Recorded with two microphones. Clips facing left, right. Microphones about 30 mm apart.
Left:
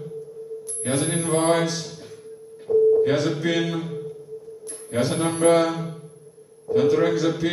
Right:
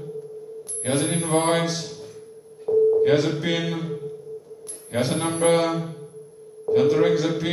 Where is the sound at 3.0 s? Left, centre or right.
Centre.